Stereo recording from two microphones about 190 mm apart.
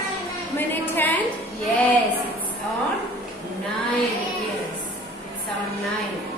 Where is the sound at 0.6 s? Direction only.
10° left (ahead or behind).